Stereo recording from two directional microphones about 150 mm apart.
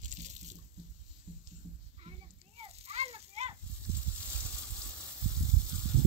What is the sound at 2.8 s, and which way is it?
Children playing, 45° right (ahead or behind).